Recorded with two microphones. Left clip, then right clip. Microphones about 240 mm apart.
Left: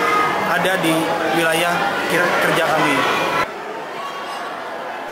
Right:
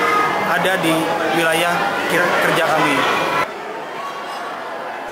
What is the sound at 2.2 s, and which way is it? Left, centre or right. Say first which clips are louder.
Speech: right 1 dB; centre.